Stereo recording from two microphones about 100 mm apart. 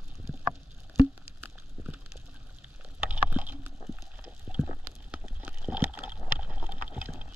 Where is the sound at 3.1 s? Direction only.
15° right (ahead or behind).